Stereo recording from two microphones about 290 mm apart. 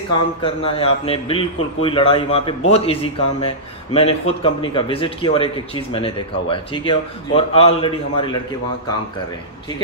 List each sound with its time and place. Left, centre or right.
0.1 s a man's voice: centre